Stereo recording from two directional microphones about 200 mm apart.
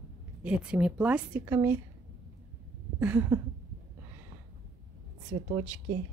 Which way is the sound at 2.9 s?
5° right (ahead or behind).